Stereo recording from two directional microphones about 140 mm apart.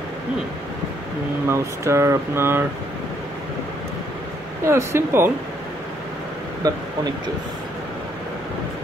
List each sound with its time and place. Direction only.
1.5 s speech: 20° right (ahead or behind)
4.6 s speech: 15° right (ahead or behind)
6.6 s speech: 25° right (ahead or behind)